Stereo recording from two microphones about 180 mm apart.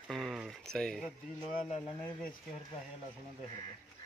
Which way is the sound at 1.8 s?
20° left (ahead or behind).